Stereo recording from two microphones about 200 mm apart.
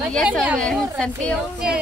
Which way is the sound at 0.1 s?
5° left (ahead or behind).